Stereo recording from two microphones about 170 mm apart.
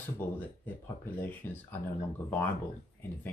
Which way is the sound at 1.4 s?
10° left (ahead or behind).